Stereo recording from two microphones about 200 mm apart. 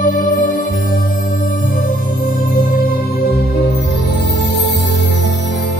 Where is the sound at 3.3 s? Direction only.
55° left (ahead or behind).